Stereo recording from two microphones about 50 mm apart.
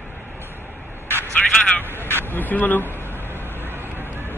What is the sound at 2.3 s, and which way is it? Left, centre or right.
Speech, left.